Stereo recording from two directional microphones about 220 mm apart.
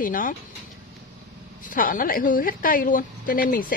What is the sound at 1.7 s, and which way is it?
Speech, 40° left (ahead or behind).